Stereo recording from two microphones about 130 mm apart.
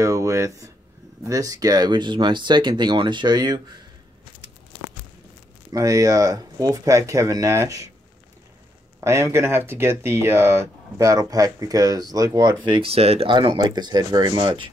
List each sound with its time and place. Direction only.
0.0 s speech: 25° right (ahead or behind)
5.7 s speech: 25° right (ahead or behind)
9.0 s speech: 20° right (ahead or behind); by 13.3 s 50° right (ahead or behind)
13.3 s speech: 40° right (ahead or behind)